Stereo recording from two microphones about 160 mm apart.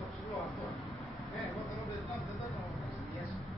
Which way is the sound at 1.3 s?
Centre (ahead or behind).